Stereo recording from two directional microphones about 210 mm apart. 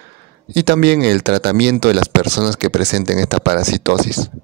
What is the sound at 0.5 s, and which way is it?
Speech, 50° right (ahead or behind).